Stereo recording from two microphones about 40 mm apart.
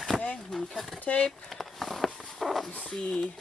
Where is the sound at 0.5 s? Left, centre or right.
Centre.